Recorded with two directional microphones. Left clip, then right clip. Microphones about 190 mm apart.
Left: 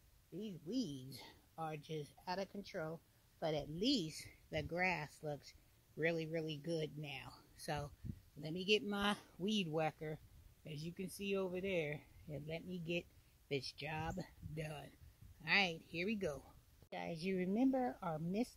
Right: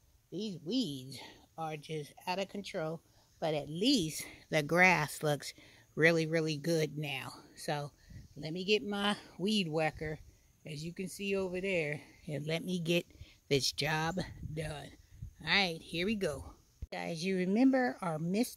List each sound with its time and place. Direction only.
0.4 s speech: 15° right (ahead or behind)
1.1 s speech: centre (ahead or behind); by 3.0 s 15° right (ahead or behind)
3.3 s a woman's voice: 5° right (ahead or behind)
3.7 s speech: 15° right (ahead or behind)
12.3 s speech: 20° right (ahead or behind)
17.6 s speech: 30° right (ahead or behind)